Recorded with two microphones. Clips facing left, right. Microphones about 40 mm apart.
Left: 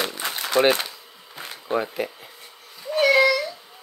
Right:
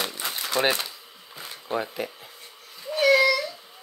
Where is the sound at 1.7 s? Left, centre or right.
Centre.